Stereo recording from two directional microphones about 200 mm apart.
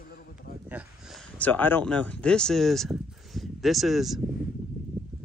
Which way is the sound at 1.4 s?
10° left (ahead or behind).